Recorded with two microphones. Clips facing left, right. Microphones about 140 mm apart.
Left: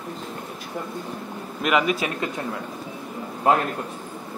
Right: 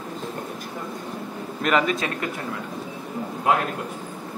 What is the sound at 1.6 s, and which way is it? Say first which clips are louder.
Speech: even; 10° left (ahead or behind).